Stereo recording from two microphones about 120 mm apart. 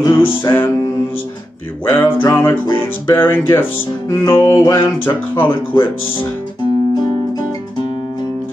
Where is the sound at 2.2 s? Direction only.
20° left (ahead or behind).